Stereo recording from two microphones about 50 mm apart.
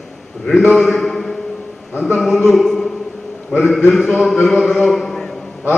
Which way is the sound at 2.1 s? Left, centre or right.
Centre.